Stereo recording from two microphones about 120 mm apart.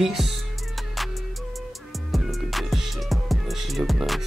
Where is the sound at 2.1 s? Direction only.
Centre (ahead or behind).